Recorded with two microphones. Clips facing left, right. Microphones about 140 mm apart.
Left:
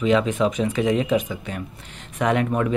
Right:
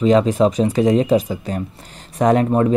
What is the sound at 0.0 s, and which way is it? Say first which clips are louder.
Speech: right 5 dB; 35° right (ahead or behind).